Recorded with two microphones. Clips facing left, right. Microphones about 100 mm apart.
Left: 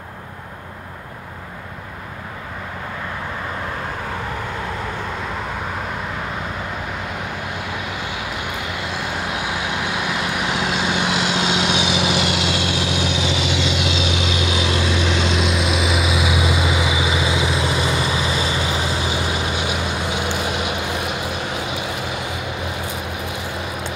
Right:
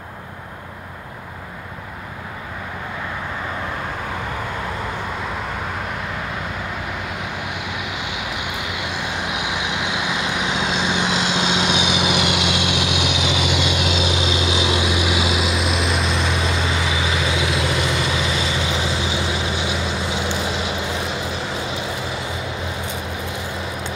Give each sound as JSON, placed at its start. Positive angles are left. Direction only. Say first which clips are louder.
{"t": 8.9, "sound": "vehicle", "louder": "left 1 dB", "side_deg": -20}
{"t": 13.6, "sound": "vehicle", "louder": "even", "side_deg": -55}
{"t": 14.5, "sound": "vehicle", "louder": "even", "side_deg": -15}
{"t": 17.5, "sound": "vehicle", "louder": "left 1 dB", "side_deg": 25}
{"t": 17.8, "sound": "vehicle", "louder": "left 1 dB", "side_deg": 5}
{"t": 19.0, "sound": "vehicle", "louder": "left 1 dB", "side_deg": 50}
{"t": 20.2, "sound": "vehicle", "louder": "left 1 dB", "side_deg": 15}